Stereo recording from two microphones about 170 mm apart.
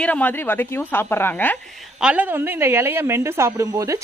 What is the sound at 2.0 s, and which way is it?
Speech, 10° right (ahead or behind).